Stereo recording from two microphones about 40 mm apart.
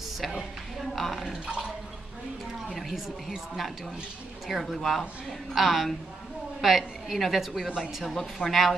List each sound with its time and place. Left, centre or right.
0.2 s a woman's voice: centre
2.7 s a woman's voice: centre